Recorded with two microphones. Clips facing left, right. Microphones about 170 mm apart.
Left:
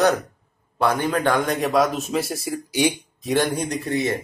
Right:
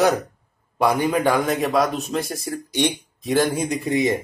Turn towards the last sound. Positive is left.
turn(degrees=-15)  # may be behind; listen again after turning